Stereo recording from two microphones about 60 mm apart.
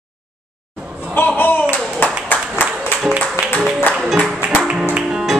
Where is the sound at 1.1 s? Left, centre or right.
Left.